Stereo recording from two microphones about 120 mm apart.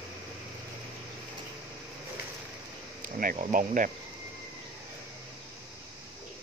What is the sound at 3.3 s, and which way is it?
Speech, 90° right.